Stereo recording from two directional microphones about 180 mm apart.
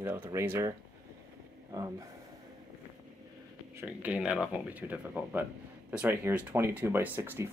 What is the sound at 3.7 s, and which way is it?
Speech, 10° right (ahead or behind).